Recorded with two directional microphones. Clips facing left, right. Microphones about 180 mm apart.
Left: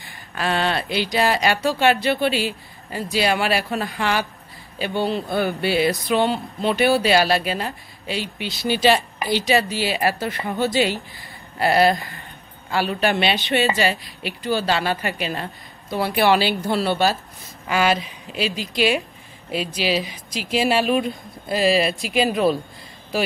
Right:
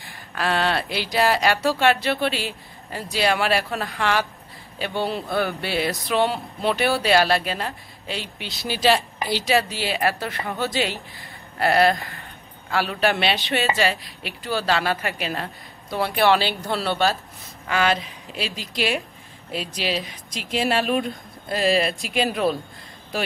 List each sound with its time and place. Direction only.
0.0 s speech: centre (ahead or behind)